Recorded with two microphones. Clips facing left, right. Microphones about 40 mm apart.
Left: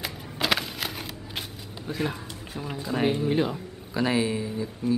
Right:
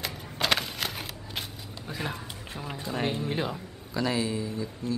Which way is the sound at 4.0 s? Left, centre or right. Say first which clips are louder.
Left 3 dB; left.